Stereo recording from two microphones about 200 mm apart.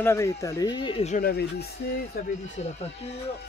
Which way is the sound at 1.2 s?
50° left (ahead or behind).